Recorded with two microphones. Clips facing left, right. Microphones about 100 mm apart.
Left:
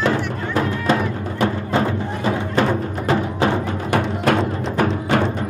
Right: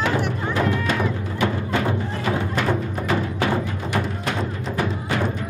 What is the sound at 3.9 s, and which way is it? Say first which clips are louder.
Music: left 8 dB; 65° left (ahead or behind).